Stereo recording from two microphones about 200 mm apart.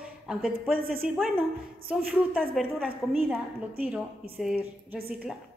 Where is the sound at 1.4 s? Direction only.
5° right (ahead or behind).